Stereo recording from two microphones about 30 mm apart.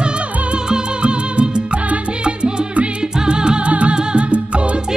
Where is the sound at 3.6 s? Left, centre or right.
Right.